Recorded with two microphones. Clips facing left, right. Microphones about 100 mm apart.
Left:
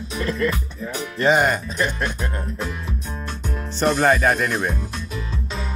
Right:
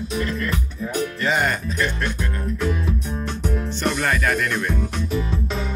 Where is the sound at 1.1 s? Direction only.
20° left (ahead or behind).